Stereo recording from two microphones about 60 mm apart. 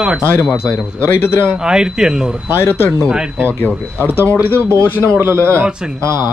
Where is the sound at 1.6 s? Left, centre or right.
Centre.